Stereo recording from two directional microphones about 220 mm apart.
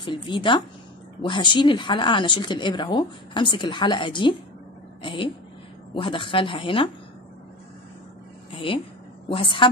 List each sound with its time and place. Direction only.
0.0 s speech: 20° left (ahead or behind)
8.5 s speech: 25° left (ahead or behind)